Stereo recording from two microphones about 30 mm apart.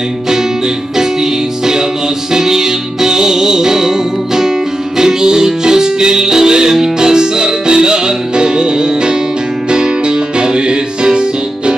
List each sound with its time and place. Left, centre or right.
2.3 s music: centre
4.9 s music: centre